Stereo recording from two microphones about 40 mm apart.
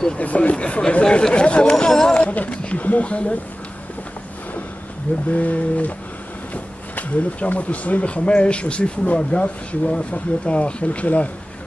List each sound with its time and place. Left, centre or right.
0.2 s speech: left
1.1 s chatter: left
2.3 s speech: left
5.3 s speech: left